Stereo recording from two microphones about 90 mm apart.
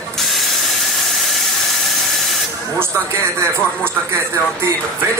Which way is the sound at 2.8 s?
30° right (ahead or behind).